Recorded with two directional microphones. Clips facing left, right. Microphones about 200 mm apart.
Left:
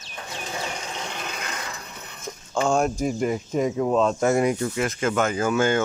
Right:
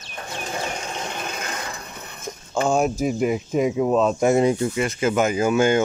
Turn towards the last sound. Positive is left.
turn(degrees=-15)  # may be behind; listen again after turning